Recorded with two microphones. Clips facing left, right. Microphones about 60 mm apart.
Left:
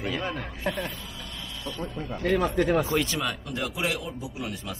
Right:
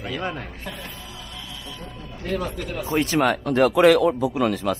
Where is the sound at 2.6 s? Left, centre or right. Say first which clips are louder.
Left 7 dB; left.